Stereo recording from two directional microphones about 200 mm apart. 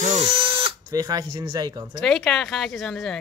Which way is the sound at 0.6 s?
20° right (ahead or behind).